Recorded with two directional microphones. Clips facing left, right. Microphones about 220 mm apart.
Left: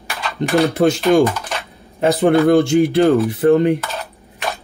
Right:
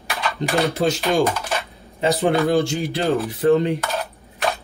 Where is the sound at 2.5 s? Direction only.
60° left (ahead or behind).